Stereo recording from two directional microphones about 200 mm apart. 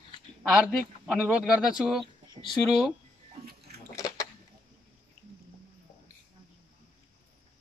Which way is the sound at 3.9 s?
15° left (ahead or behind).